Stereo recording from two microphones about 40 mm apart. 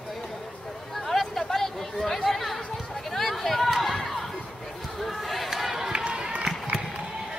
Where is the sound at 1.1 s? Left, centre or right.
Centre.